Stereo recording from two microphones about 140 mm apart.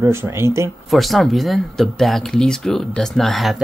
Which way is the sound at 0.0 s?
20° right (ahead or behind).